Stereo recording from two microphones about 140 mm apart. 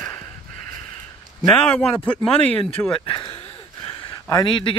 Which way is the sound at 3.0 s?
40° left (ahead or behind).